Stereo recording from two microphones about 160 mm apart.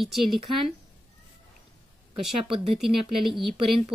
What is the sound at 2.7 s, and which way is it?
Speech, centre (ahead or behind).